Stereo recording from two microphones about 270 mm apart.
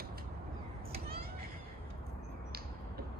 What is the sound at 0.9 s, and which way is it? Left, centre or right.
Children playing, right.